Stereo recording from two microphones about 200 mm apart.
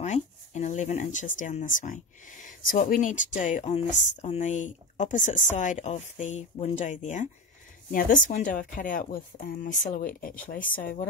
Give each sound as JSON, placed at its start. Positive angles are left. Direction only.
{"t": 0.0, "sound": "speech", "side_deg": 35}